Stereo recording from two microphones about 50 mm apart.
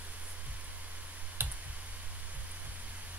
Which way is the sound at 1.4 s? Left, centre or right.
Right.